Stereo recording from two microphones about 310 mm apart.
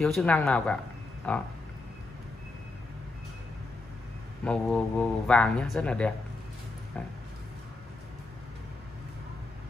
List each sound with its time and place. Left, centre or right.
0.0 s speech: centre
4.5 s speech: centre